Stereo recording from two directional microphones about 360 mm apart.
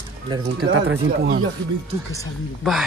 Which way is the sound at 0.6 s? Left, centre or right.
Right.